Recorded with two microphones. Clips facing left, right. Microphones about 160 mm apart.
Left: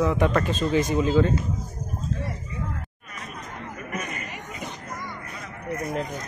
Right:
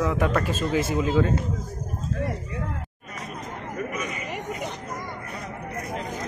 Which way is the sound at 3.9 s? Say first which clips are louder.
Right 1 dB; 50° left (ahead or behind).